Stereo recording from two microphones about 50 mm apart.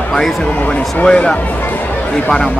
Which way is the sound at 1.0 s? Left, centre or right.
Centre.